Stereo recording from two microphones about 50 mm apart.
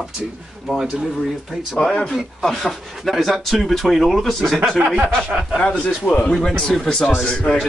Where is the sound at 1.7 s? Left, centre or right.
Left.